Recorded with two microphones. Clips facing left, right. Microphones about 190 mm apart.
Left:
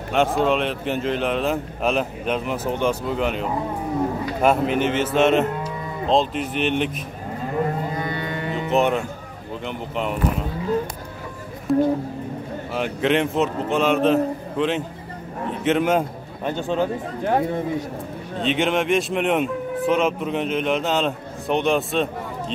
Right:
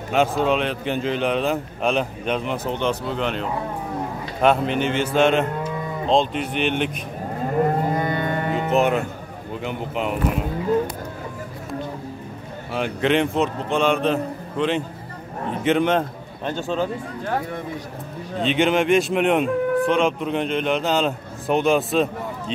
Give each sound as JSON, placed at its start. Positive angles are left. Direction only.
{"t": 0.1, "sound": "speech", "side_deg": 0}
{"t": 7.9, "sound": "music", "side_deg": -50}
{"t": 8.7, "sound": "speech", "side_deg": 0}
{"t": 11.7, "sound": "a man's voice", "side_deg": 0}
{"t": 18.4, "sound": "speech", "side_deg": 0}